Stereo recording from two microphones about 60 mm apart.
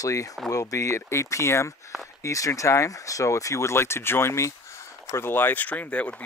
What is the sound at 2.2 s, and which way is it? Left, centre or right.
Speech, left.